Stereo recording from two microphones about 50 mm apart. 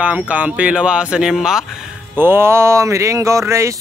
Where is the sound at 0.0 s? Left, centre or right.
Right; by 1.6 s centre.